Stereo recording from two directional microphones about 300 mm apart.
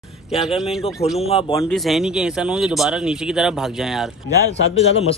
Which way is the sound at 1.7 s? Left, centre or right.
Centre.